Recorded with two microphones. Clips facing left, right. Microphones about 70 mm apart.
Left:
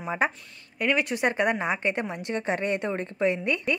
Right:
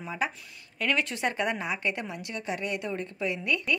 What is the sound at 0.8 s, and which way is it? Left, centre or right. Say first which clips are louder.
A woman's voice: left 3 dB; centre.